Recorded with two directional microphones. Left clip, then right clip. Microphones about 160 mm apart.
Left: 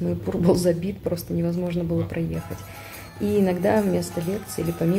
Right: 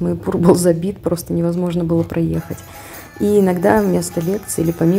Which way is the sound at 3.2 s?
35° right (ahead or behind).